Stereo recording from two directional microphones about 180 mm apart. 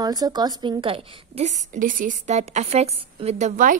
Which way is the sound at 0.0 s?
20° right (ahead or behind).